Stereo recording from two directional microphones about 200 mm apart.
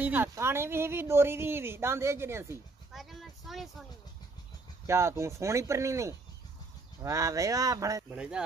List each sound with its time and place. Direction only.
0.0 s speech: 10° right (ahead or behind)
2.9 s a sound: centre (ahead or behind)
4.8 s speech: 15° right (ahead or behind)
8.1 s speech: 5° right (ahead or behind)